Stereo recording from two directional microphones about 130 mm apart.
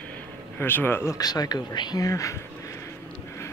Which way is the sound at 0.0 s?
15° left (ahead or behind).